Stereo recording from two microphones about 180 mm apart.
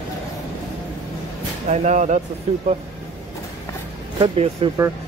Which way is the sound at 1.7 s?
40° right (ahead or behind).